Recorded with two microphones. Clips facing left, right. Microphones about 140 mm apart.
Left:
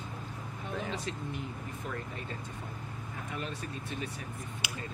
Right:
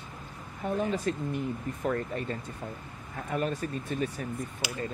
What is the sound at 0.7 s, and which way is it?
Speech, 45° right (ahead or behind).